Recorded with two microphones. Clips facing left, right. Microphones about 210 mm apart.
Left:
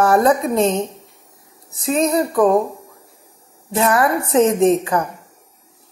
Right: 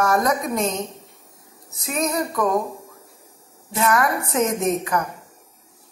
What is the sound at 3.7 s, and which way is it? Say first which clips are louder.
A woman's voice: left 4 dB; 30° left (ahead or behind).